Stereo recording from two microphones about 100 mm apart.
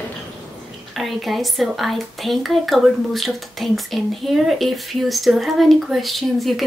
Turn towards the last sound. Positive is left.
turn(degrees=0)  # may be behind; listen again after turning